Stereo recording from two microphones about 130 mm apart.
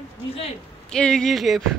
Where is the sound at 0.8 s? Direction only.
5° left (ahead or behind).